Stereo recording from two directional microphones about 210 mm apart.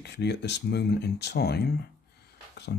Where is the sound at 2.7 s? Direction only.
55° left (ahead or behind).